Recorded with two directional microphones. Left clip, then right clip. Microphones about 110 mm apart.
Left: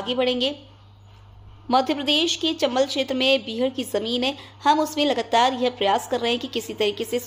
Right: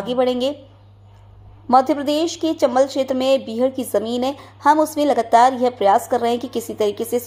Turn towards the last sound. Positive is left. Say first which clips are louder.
# right 4 dB
turn(degrees=-15)  # may be behind; listen again after turning